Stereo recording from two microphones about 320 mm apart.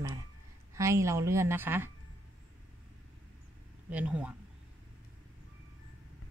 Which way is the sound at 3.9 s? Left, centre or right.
Centre.